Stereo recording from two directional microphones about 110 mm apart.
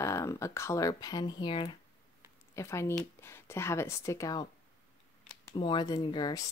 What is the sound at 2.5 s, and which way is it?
Speech, 25° left (ahead or behind).